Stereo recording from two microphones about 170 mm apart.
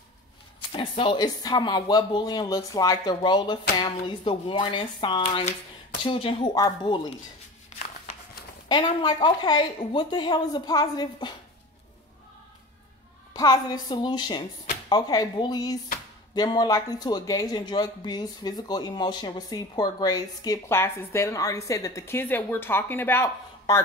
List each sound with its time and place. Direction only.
0.7 s speech: 30° left (ahead or behind)
8.6 s speech: 25° left (ahead or behind)
13.3 s speech: 20° left (ahead or behind)